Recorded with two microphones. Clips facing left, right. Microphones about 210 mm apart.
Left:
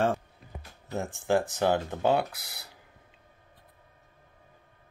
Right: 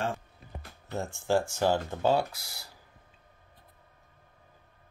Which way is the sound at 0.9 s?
15° left (ahead or behind).